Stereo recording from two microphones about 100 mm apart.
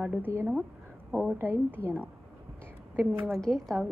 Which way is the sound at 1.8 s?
15° left (ahead or behind).